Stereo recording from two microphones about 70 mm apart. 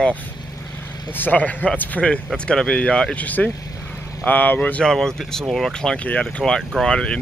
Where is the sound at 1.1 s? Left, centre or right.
Left.